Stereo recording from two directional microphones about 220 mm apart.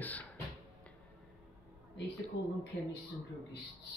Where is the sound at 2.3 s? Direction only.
55° left (ahead or behind).